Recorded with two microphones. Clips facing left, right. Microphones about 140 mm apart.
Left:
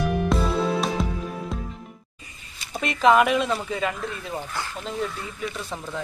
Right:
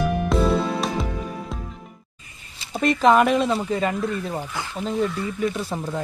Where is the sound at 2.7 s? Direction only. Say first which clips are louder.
Right 2 dB; centre (ahead or behind).